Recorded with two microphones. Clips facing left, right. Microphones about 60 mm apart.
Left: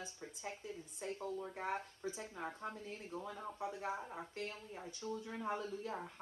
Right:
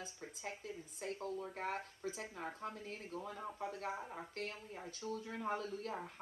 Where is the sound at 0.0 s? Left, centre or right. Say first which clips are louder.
Even; right.